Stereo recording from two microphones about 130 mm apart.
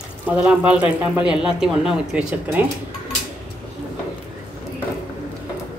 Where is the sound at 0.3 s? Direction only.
10° right (ahead or behind).